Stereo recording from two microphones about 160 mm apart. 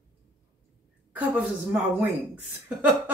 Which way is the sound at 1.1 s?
10° right (ahead or behind).